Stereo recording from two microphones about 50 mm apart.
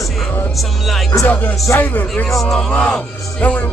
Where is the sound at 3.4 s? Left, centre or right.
Left.